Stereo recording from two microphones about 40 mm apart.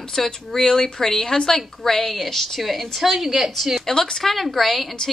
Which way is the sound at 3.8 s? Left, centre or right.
Centre.